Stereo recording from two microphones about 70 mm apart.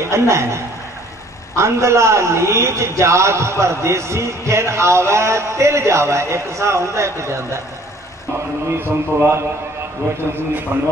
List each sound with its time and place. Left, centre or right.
0.1 s a man's voice: right
1.6 s a man's voice: right
8.6 s a man's voice: right
10.7 s a man's voice: right